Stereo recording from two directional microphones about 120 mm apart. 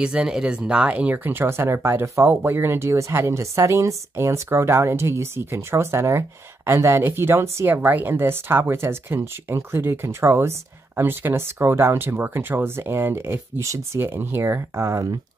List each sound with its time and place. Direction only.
0.0 s speech: 5° right (ahead or behind); by 15.1 s 25° right (ahead or behind)